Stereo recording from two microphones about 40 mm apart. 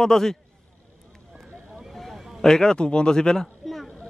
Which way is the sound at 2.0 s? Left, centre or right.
Centre.